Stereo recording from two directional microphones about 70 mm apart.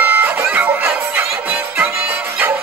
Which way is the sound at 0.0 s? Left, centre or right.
Right.